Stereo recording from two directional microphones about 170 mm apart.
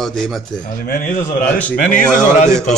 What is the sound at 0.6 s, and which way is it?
Speech, 55° left (ahead or behind).